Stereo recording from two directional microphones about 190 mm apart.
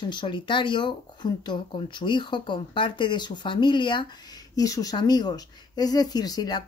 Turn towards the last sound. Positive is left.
turn(degrees=20)  # may be behind; listen again after turning